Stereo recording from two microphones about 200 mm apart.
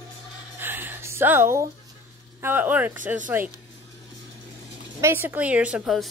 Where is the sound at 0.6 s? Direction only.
10° right (ahead or behind).